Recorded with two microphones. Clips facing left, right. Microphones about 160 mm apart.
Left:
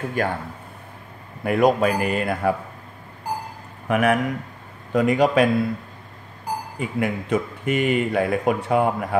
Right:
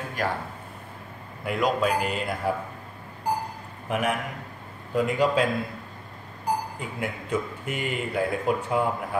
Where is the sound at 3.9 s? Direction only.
70° left (ahead or behind).